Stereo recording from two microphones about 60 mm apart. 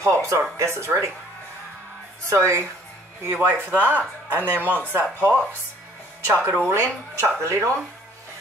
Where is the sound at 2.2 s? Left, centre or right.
Right.